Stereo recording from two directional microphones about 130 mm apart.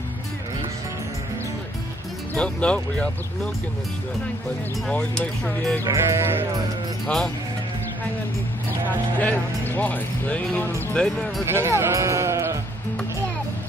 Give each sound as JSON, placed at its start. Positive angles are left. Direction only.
{"t": 2.3, "sound": "speech", "side_deg": 10}
{"t": 4.8, "sound": "speech", "side_deg": 5}
{"t": 5.9, "sound": "speech", "side_deg": -20}
{"t": 9.2, "sound": "speech", "side_deg": 15}
{"t": 11.4, "sound": "speech", "side_deg": -20}